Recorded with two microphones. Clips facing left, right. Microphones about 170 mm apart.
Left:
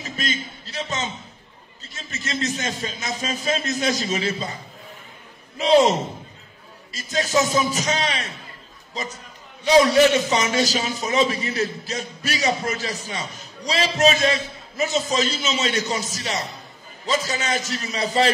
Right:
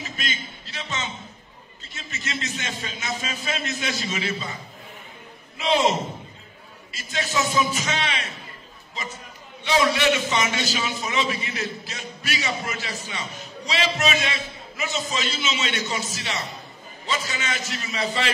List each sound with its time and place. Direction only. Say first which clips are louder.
0.0 s a man's voice: left 4 dB; 40° left (ahead or behind)
5.6 s a man's voice: left 5 dB; 40° left (ahead or behind)
9.7 s a man's voice: left 6 dB; 40° left (ahead or behind)